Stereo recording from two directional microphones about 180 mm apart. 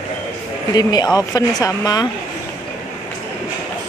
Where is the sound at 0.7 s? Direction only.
20° left (ahead or behind).